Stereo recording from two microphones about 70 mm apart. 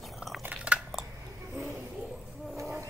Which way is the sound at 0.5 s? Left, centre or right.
Centre.